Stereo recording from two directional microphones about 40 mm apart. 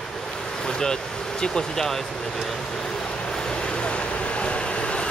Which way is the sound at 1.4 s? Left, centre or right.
Centre.